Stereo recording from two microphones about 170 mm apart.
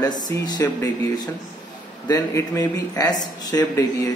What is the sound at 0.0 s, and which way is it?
Speech, 25° left (ahead or behind).